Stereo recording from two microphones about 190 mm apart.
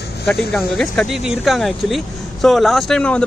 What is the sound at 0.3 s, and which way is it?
Speech, centre (ahead or behind).